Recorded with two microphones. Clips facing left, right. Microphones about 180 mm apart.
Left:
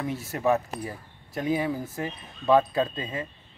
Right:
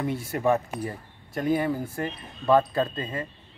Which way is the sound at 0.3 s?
Centre (ahead or behind).